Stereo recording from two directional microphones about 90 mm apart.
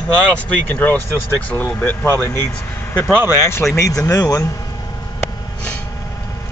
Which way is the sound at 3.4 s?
30° left (ahead or behind).